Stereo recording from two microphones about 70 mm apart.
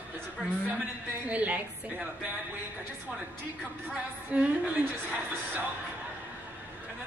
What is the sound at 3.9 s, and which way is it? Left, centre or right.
A woman's voice, centre.